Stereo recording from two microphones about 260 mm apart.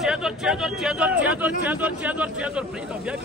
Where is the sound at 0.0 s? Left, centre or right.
Centre.